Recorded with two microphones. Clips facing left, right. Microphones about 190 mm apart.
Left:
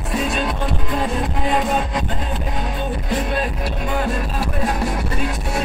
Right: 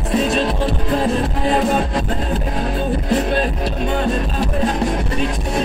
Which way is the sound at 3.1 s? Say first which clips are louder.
Right 4 dB; 30° right (ahead or behind).